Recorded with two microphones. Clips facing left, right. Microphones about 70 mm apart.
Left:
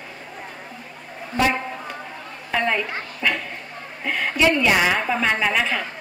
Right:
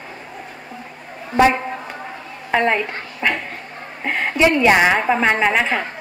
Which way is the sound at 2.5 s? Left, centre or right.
Right.